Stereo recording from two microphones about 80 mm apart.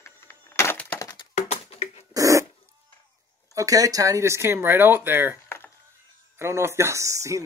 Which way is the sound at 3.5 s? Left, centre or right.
Right.